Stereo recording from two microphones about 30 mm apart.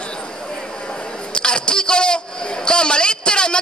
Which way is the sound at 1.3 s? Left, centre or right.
Left.